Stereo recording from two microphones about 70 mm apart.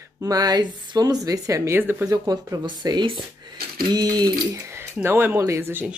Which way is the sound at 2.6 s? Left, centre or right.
Right.